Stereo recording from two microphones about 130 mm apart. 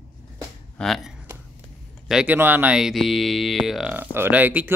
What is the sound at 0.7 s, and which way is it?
A man's voice, centre (ahead or behind).